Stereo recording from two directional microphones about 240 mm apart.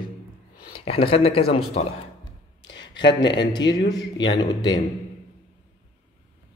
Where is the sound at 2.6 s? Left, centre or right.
Left.